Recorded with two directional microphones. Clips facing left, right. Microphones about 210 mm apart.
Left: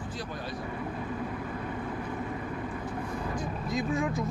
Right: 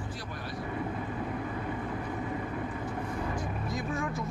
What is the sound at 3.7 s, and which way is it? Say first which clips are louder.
Speech: left 6 dB; 15° left (ahead or behind).